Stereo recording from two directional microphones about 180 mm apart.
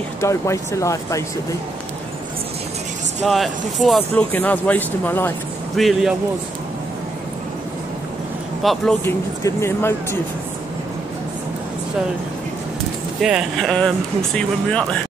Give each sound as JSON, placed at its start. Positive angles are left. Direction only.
{"t": 0.2, "sound": "speech", "side_deg": 15}
{"t": 3.3, "sound": "speech", "side_deg": 0}
{"t": 5.8, "sound": "speech", "side_deg": 0}
{"t": 8.6, "sound": "speech", "side_deg": 5}
{"t": 13.2, "sound": "speech", "side_deg": -5}